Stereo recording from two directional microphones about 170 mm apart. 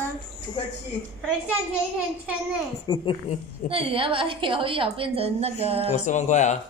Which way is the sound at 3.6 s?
35° right (ahead or behind).